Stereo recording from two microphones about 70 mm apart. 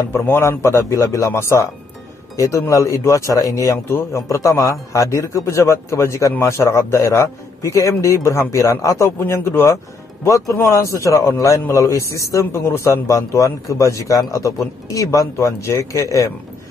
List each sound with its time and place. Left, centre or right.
0.1 s a man's voice: left
3.7 s a man's voice: left
10.2 s a man's voice: left